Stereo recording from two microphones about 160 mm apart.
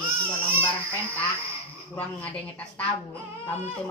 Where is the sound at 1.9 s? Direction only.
10° left (ahead or behind).